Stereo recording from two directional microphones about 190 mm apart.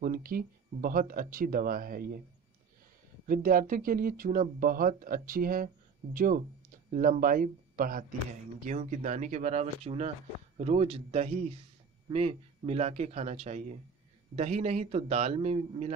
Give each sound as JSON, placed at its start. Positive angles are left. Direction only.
{"t": 0.0, "sound": "speech", "side_deg": -50}
{"t": 3.3, "sound": "speech", "side_deg": -45}